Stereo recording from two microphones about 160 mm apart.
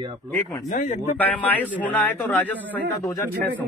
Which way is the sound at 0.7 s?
50° left (ahead or behind).